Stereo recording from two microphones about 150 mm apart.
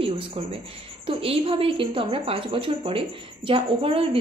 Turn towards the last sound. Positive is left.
turn(degrees=-40)  # may be behind; listen again after turning